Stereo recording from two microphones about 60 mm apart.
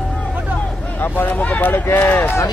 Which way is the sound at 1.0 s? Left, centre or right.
Left.